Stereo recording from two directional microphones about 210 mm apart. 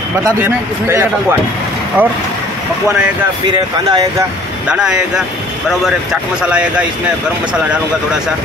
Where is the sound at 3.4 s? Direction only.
20° right (ahead or behind).